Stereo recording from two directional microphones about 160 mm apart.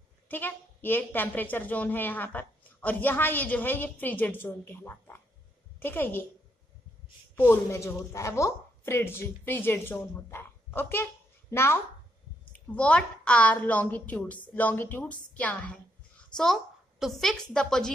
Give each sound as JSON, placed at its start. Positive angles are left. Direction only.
{"t": 0.3, "sound": "a woman's voice", "side_deg": 10}
{"t": 7.3, "sound": "a woman's voice", "side_deg": 15}